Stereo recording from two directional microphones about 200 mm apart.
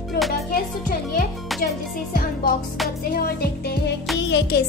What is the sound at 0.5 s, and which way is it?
Music, 45° left (ahead or behind).